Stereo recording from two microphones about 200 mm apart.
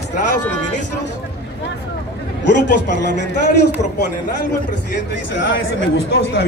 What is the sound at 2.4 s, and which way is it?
Speech, 60° left (ahead or behind).